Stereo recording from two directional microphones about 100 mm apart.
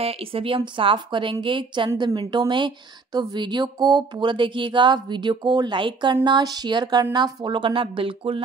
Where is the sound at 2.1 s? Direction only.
45° right (ahead or behind).